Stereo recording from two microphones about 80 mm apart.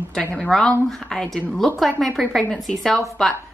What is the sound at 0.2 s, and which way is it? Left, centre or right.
A woman's voice, centre.